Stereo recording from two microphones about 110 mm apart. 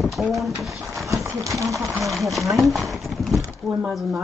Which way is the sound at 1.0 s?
30° right (ahead or behind).